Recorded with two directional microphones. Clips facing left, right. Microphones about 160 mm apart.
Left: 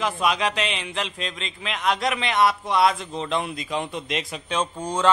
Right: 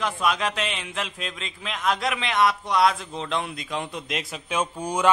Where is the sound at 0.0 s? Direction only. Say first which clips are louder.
Left 2 dB; centre (ahead or behind).